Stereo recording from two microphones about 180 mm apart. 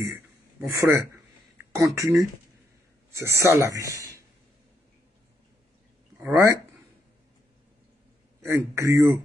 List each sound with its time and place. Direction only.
0.7 s speech: 15° right (ahead or behind)
6.1 s speech: 10° right (ahead or behind)
8.4 s speech: 15° right (ahead or behind)